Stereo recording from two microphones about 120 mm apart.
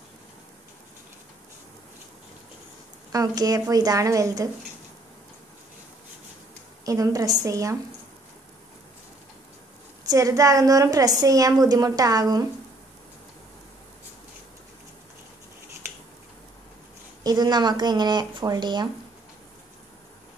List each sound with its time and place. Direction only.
3.1 s a woman's voice: 30° right (ahead or behind)
6.8 s a woman's voice: 30° right (ahead or behind)
10.0 s a woman's voice: 25° right (ahead or behind)
17.2 s speech: 35° right (ahead or behind)